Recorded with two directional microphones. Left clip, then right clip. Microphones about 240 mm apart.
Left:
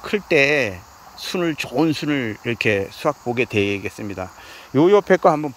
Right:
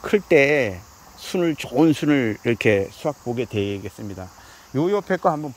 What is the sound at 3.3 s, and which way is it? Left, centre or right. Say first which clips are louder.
Speech: left 5 dB; left.